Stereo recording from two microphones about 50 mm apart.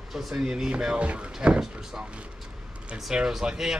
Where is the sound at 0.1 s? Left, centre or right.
Centre.